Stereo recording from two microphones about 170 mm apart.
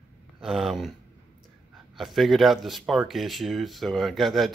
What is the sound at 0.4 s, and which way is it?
Speech, centre (ahead or behind).